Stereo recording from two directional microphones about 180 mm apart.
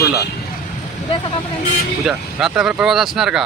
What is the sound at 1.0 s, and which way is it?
Speech, 30° left (ahead or behind).